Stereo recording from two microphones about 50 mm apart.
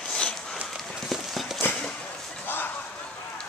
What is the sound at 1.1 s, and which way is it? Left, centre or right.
Clip-clop, centre.